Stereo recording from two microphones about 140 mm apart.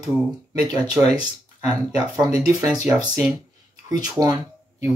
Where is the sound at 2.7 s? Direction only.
25° right (ahead or behind).